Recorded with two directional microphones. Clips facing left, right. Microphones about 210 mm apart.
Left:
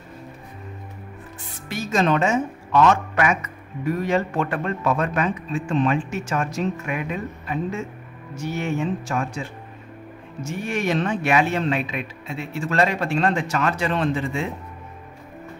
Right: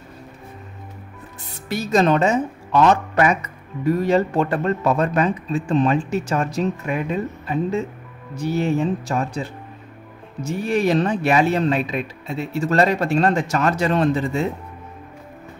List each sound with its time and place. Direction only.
1.7 s speech: 35° right (ahead or behind)